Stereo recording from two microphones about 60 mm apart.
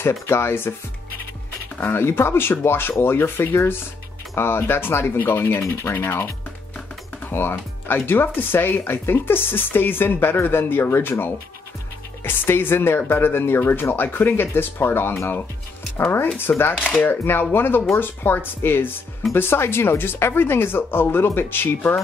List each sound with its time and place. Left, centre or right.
0.0 s speech: left
1.8 s speech: left
5.6 s speech: left
16.3 s speech: left